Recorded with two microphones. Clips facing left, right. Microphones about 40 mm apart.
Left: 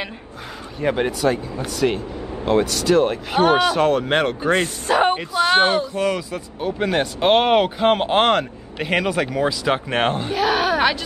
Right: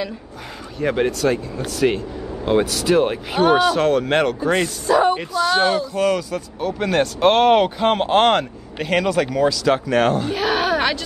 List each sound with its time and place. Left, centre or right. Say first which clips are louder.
0.7 s speech: right 1 dB; centre
3.3 s speech: right 1 dB; centre
4.4 s a man's voice: even; left
5.9 s speech: right 3 dB; centre; by 10.3 s left
10.3 s a sound: left 1 dB; centre